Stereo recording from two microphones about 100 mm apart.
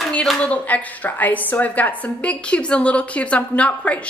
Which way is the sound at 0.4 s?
15° left (ahead or behind).